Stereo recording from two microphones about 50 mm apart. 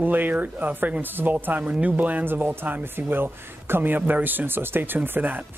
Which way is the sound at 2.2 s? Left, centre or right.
Right.